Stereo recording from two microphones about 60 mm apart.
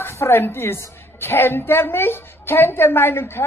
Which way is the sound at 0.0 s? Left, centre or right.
Left.